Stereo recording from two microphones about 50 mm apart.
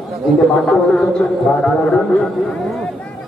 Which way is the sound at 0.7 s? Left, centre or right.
Centre.